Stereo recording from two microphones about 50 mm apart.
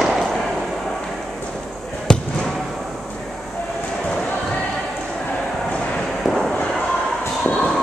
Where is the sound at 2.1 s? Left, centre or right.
Centre.